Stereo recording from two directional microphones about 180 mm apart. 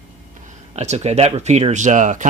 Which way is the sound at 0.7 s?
35° right (ahead or behind).